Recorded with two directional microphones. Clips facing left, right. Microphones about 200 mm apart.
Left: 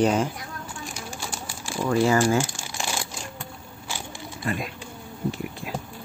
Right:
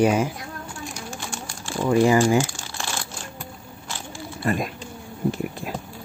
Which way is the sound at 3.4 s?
10° left (ahead or behind).